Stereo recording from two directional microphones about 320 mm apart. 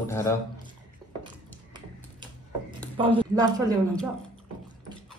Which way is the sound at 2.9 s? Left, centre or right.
Centre.